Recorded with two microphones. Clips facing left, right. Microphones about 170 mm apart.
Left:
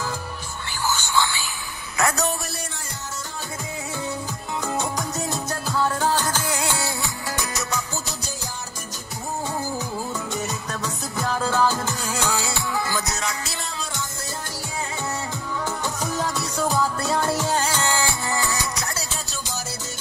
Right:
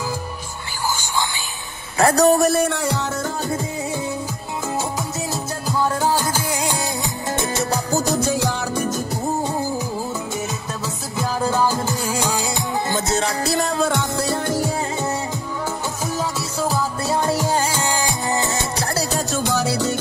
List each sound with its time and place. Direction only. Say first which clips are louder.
0.8 s a sound: even; 15° right (ahead or behind)
2.0 s speech: right 10 dB; 35° right (ahead or behind); by 3.1 s 70° right (ahead or behind)
5.3 s music: right 2 dB; 10° right (ahead or behind)
7.3 s music: right 7 dB; 30° right (ahead or behind); by 8.4 s 50° right (ahead or behind)
8.4 s music: right 13 dB; 70° right (ahead or behind)
11.1 s music: right 2 dB; 10° right (ahead or behind); by 13.7 s 35° right (ahead or behind)
13.7 s music: right 12 dB; 55° right (ahead or behind)
16.0 s music: right 2 dB; 5° right (ahead or behind)
17.1 s music: right 6 dB; 15° right (ahead or behind)
19.1 s music: right 12 dB; 55° right (ahead or behind); by 19.9 s 70° right (ahead or behind)